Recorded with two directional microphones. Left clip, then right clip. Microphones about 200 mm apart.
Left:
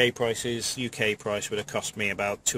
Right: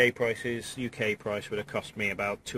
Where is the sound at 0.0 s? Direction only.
35° left (ahead or behind).